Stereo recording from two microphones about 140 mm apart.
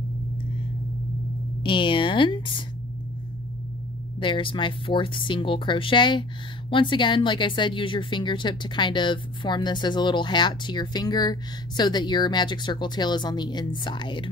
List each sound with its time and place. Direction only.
1.6 s a woman's voice: 35° left (ahead or behind)
4.2 s speech: 35° left (ahead or behind)